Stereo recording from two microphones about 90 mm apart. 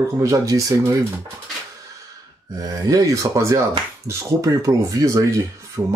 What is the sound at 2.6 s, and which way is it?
Speech, 40° right (ahead or behind).